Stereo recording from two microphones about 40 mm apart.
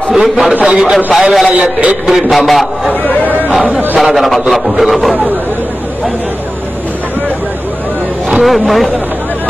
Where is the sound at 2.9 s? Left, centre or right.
Left.